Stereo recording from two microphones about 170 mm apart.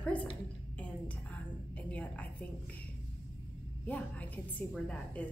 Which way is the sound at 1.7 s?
10° left (ahead or behind).